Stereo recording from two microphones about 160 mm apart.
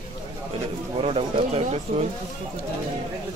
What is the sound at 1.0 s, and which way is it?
Speech, 40° right (ahead or behind).